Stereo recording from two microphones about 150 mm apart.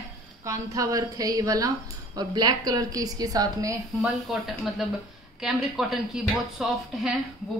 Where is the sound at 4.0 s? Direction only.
Centre (ahead or behind).